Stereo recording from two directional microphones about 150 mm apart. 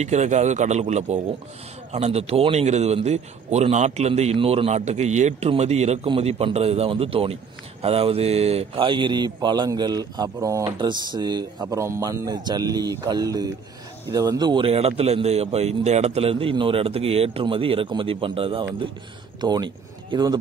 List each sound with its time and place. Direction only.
0.0 s a man's voice: 50° right (ahead or behind); by 20.3 s 30° right (ahead or behind)